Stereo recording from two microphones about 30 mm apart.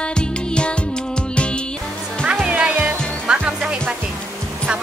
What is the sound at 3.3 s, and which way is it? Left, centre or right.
Music, right.